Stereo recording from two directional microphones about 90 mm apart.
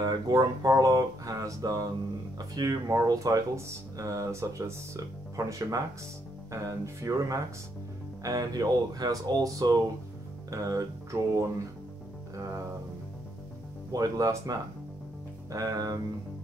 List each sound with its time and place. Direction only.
0.0 s speech: 45° right (ahead or behind)
13.9 s speech: 45° right (ahead or behind)